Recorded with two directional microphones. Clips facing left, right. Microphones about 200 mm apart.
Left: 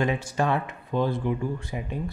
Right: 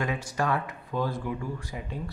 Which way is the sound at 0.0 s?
25° left (ahead or behind).